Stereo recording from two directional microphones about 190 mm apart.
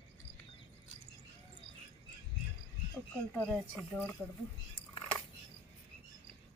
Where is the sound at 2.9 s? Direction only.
5° left (ahead or behind).